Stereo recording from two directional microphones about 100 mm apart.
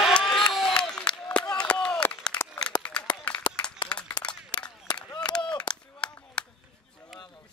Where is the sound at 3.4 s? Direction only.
45° left (ahead or behind).